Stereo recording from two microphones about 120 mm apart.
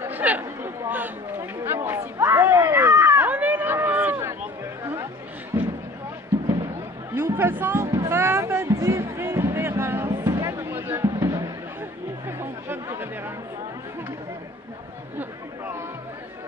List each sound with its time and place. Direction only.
0.0 s chatter: 15° right (ahead or behind)
5.5 s a sound: 20° right (ahead or behind)
7.2 s music: 20° right (ahead or behind)
12.3 s chatter: 20° right (ahead or behind)